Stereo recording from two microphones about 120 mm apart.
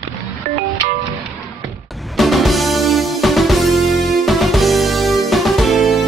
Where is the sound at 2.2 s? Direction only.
Centre (ahead or behind).